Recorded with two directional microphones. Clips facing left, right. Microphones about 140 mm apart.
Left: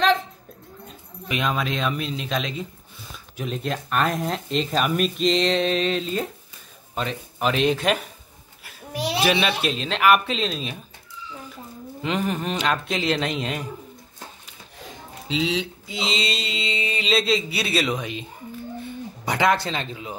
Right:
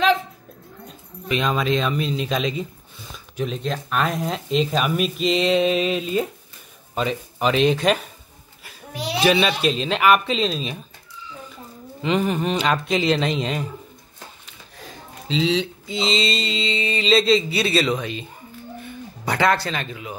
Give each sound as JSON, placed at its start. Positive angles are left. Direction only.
{"t": 0.8, "sound": "a child's voice", "side_deg": 5}
{"t": 12.0, "sound": "speech", "side_deg": 0}
{"t": 15.2, "sound": "mantra", "side_deg": 10}
{"t": 19.2, "sound": "speech", "side_deg": 20}